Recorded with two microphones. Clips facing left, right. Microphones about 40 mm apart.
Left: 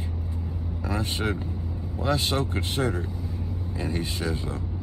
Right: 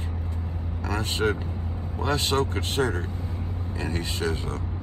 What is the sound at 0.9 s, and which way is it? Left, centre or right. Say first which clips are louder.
Speech: right 3 dB; right.